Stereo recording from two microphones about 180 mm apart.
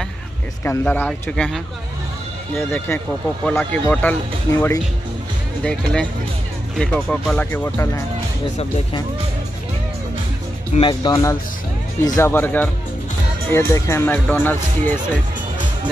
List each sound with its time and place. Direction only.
0.7 s speech: 10° left (ahead or behind)
2.5 s speech: 15° left (ahead or behind)
10.7 s speech: 30° left (ahead or behind); by 15.0 s 10° left (ahead or behind)